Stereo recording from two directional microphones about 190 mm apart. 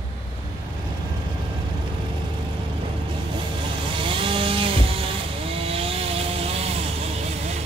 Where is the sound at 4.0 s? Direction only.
25° right (ahead or behind).